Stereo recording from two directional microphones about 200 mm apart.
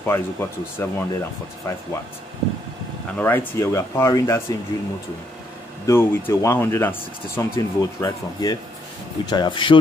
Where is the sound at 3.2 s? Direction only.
10° left (ahead or behind).